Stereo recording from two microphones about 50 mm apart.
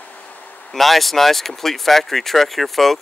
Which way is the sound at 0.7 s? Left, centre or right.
Centre.